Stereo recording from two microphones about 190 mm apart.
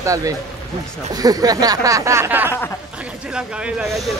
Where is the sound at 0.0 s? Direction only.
15° right (ahead or behind).